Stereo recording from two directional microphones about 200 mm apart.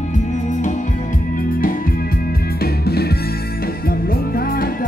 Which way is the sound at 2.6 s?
50° left (ahead or behind).